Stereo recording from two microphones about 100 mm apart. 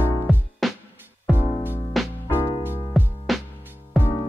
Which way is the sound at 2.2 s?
55° left (ahead or behind).